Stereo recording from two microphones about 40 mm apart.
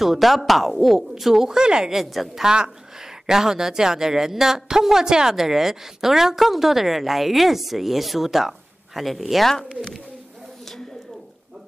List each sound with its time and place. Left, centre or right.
0.0 s speech: centre
1.9 s speech: centre
2.4 s speech: right; by 9.5 s centre
9.5 s speech: centre